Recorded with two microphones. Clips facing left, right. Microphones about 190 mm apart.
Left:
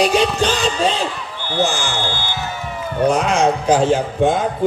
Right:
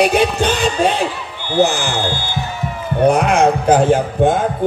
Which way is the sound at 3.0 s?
60° right (ahead or behind).